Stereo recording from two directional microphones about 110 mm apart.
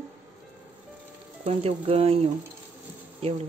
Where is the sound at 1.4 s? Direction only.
65° right (ahead or behind).